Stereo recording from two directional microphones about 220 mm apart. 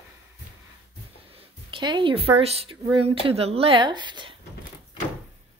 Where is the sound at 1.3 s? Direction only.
20° right (ahead or behind).